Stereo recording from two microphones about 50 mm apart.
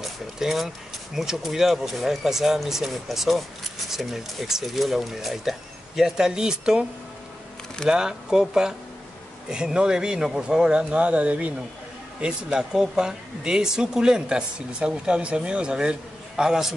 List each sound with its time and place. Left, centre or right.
0.0 s a sound: centre
1.1 s speech: centre
7.9 s speech: centre
12.2 s speech: centre